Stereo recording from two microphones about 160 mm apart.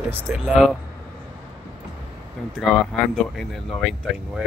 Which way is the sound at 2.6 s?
Centre (ahead or behind).